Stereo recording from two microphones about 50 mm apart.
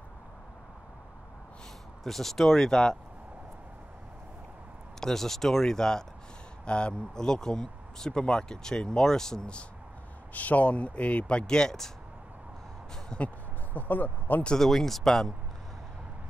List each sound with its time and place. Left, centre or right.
2.0 s speech: centre
5.0 s speech: centre
10.3 s speech: left; by 11.9 s centre
13.1 s speech: centre
13.7 s speech: left
14.6 s speech: centre